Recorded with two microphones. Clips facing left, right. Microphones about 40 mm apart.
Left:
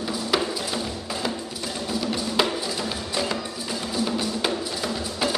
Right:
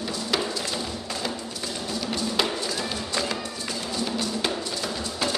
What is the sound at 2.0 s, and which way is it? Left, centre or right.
Music, centre.